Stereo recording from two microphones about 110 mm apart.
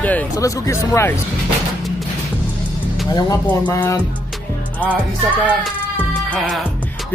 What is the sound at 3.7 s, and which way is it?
Speech, 25° left (ahead or behind).